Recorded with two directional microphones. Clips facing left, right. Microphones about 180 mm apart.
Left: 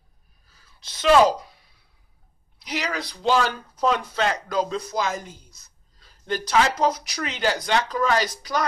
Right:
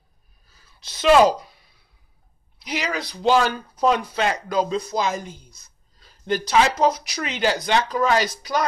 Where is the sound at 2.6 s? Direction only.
15° right (ahead or behind).